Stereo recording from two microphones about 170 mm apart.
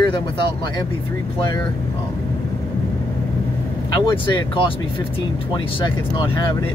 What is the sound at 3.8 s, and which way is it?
Speech, 25° left (ahead or behind).